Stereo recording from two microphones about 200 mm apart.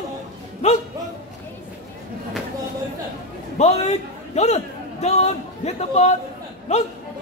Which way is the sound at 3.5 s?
35° left (ahead or behind).